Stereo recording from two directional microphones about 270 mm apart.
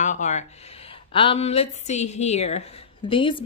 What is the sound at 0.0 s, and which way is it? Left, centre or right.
A woman's voice, left.